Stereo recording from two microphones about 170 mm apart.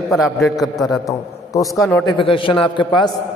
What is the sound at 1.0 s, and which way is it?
A man's voice, 20° left (ahead or behind).